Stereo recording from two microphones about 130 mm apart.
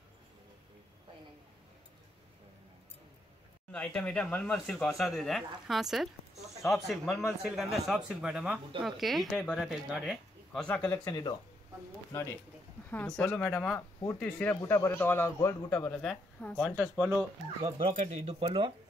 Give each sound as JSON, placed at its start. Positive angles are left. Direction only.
{"t": 3.7, "sound": "speech", "side_deg": 5}
{"t": 11.1, "sound": "speech", "side_deg": 30}
{"t": 12.9, "sound": "a man's voice", "side_deg": 5}
{"t": 16.7, "sound": "speech", "side_deg": 0}
{"t": 17.9, "sound": "speech", "side_deg": -60}
{"t": 18.4, "sound": "speech", "side_deg": -40}